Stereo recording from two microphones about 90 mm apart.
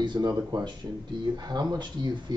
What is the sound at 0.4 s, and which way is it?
Speech, 50° right (ahead or behind).